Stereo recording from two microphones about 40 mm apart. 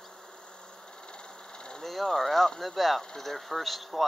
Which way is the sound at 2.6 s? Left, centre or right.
Centre.